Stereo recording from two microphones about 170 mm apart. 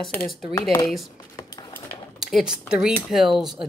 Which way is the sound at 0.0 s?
5° left (ahead or behind).